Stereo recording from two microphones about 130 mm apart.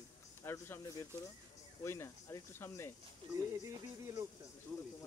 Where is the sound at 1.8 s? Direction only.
20° left (ahead or behind).